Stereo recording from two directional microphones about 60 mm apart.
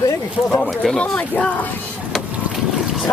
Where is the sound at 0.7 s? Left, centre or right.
Centre.